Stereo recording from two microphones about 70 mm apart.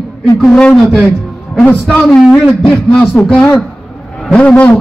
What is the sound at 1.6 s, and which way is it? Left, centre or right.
A man's voice, centre.